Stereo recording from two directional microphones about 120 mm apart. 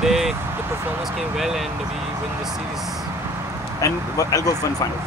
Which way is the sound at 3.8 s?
30° left (ahead or behind).